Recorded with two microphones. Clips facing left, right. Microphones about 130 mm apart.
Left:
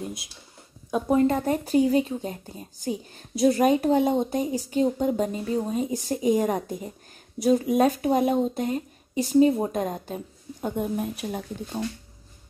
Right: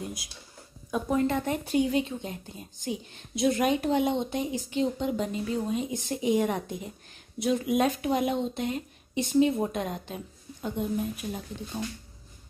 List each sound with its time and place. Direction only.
0.9 s speech: 35° left (ahead or behind)